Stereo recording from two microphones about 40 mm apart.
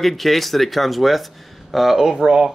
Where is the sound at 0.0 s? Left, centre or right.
Centre.